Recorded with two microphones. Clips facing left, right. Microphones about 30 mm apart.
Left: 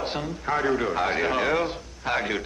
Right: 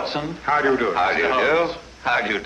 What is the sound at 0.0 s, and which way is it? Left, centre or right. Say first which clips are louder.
A man's voice: right 4 dB; right.